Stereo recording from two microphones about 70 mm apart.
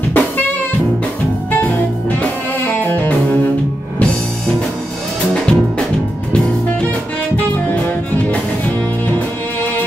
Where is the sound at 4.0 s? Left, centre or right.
Centre.